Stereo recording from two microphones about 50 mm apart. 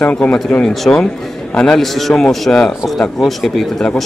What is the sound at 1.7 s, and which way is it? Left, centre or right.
Speech, centre.